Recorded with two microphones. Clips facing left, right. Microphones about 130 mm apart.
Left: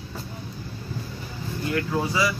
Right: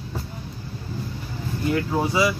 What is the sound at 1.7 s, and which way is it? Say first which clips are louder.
Speech: right 3 dB; 20° right (ahead or behind).